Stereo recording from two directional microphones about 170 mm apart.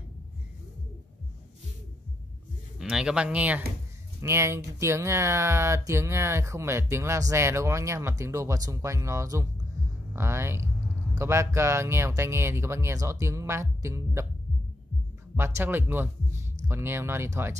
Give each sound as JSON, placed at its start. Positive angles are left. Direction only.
{"t": 2.8, "sound": "speech", "side_deg": -5}
{"t": 15.3, "sound": "speech", "side_deg": -15}